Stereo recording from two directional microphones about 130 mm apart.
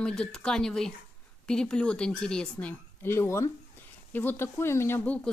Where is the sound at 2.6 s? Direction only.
20° left (ahead or behind).